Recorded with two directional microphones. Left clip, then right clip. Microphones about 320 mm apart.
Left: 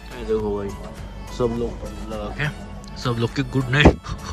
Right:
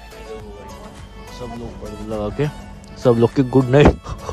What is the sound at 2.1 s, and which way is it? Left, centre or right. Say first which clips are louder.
Speech: right 5 dB; right.